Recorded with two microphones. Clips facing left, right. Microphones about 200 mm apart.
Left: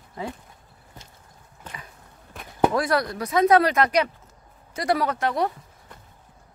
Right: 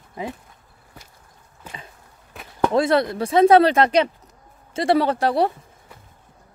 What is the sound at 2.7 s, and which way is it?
Speech, 25° right (ahead or behind).